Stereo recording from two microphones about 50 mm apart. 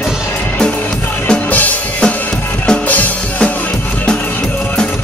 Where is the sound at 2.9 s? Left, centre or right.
Left.